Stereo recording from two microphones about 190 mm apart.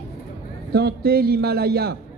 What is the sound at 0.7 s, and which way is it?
A man's voice, 55° right (ahead or behind).